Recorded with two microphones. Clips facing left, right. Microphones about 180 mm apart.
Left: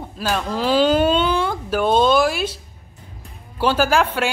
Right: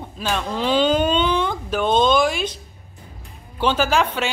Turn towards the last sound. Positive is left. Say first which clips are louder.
# left 2 dB
turn(degrees=10)  # may be behind; listen again after turning